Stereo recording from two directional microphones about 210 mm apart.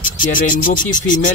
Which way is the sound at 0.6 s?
40° left (ahead or behind).